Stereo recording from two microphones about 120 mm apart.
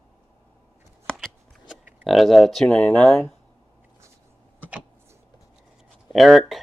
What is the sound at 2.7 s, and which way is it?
Speech, 15° left (ahead or behind).